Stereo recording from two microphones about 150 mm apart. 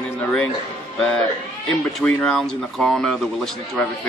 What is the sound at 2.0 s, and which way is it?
Speech, 5° left (ahead or behind).